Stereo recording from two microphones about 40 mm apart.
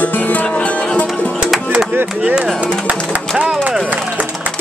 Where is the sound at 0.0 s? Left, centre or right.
Left.